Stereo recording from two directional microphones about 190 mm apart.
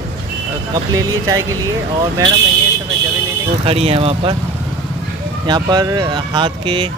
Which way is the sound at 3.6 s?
30° right (ahead or behind).